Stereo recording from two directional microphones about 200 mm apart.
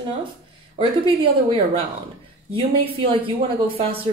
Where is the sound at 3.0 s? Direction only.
25° right (ahead or behind).